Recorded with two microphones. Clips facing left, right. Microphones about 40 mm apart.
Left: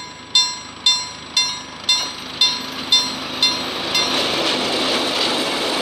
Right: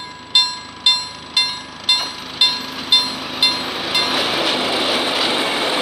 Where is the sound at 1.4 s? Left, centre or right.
Centre.